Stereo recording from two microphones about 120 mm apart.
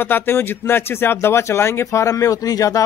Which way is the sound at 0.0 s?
15° left (ahead or behind).